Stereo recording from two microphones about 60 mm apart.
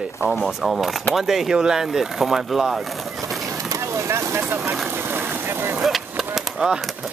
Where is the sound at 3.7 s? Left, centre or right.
Right.